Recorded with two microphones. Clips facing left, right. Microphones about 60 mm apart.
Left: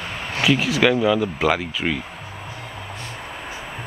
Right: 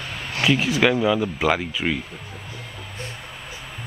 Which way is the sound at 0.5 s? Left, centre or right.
Right.